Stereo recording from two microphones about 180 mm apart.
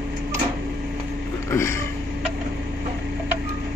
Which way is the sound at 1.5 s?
15° left (ahead or behind).